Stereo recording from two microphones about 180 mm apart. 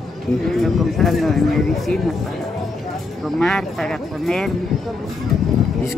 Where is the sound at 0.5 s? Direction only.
Centre (ahead or behind).